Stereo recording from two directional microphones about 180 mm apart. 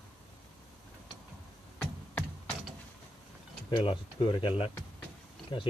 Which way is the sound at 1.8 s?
5° left (ahead or behind).